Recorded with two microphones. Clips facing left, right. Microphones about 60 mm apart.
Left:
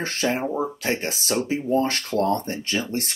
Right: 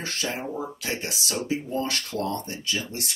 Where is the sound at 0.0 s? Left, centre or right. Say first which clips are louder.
Left 6 dB; left.